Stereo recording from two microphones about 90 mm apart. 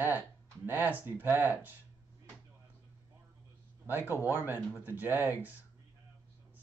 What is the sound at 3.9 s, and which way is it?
Speech, 30° left (ahead or behind).